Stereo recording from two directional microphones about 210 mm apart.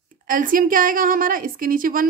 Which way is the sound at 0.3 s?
40° right (ahead or behind).